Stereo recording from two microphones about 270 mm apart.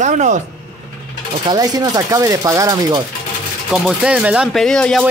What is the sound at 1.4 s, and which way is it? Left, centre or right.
Speech, centre.